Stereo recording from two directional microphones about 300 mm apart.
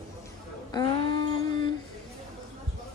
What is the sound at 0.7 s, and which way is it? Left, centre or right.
Speech, centre.